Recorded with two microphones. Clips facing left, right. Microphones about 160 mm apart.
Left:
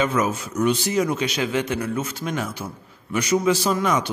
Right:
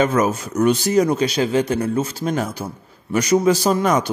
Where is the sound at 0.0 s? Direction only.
45° right (ahead or behind).